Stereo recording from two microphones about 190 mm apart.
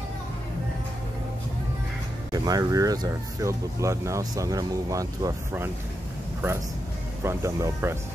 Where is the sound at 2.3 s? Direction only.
20° right (ahead or behind).